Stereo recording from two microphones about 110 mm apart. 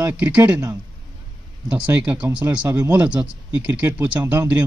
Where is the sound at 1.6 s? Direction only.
15° right (ahead or behind).